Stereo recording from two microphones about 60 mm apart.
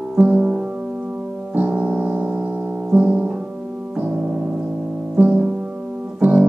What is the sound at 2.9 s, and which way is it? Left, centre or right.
Music, right.